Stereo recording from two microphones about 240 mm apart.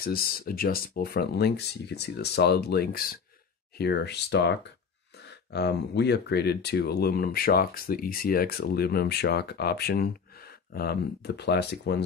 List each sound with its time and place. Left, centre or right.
0.0 s speech: left